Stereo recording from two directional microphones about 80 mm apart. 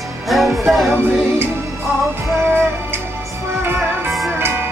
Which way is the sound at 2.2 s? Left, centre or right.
Right.